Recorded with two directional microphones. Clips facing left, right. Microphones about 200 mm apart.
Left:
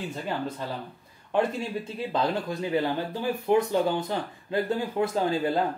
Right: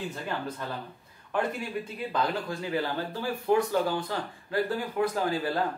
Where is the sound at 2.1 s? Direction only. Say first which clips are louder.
Left 3 dB; 20° left (ahead or behind).